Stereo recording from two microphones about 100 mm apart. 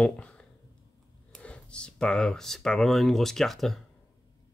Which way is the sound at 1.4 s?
10° left (ahead or behind).